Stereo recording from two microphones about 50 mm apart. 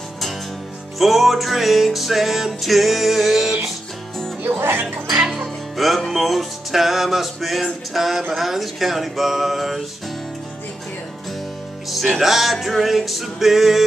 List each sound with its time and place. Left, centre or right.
0.9 s music: centre
4.5 s speech: right
5.0 s music: centre
11.9 s music: centre